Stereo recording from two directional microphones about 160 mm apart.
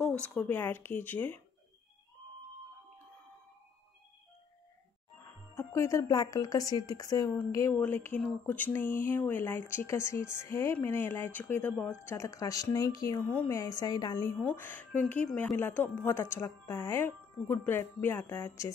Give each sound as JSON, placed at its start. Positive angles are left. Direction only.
{"t": 0.0, "sound": "speech", "side_deg": 5}
{"t": 5.6, "sound": "speech", "side_deg": 20}
{"t": 14.4, "sound": "speech", "side_deg": 10}